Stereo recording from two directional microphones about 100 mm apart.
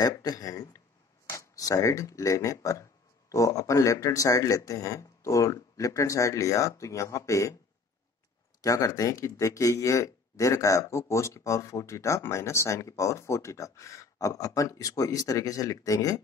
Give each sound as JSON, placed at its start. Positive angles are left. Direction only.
{"t": 0.0, "sound": "speech", "side_deg": 40}
{"t": 8.6, "sound": "speech", "side_deg": 35}